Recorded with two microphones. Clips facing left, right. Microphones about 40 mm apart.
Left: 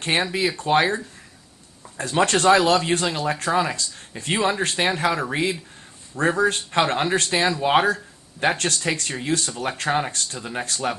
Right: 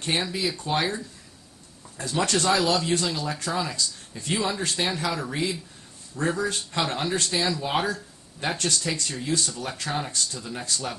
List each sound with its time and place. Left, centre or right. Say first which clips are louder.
0.0 s speech: left 5 dB; left
2.0 s speech: left 5 dB; left